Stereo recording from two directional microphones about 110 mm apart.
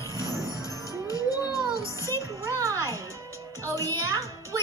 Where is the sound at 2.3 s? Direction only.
30° right (ahead or behind).